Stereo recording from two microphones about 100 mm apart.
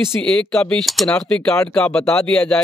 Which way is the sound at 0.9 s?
5° left (ahead or behind).